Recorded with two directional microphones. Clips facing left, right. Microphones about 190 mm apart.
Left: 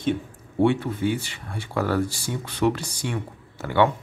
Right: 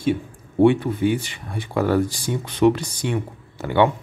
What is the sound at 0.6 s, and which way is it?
Speech, 15° right (ahead or behind).